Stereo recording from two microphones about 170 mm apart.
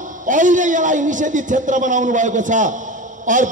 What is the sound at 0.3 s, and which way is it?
A man's voice, 50° right (ahead or behind).